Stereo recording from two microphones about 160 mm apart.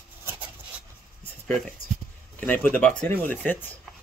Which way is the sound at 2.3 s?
10° left (ahead or behind).